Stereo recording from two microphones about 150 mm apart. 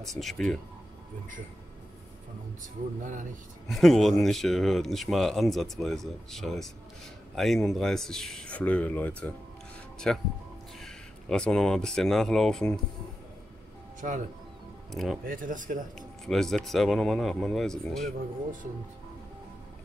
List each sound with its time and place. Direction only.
0.2 s speech: 5° left (ahead or behind)
3.0 s speech: 60° right (ahead or behind)
3.6 s speech: centre (ahead or behind)
14.9 s speech: centre (ahead or behind)
15.2 s speech: 65° right (ahead or behind)
16.3 s speech: centre (ahead or behind)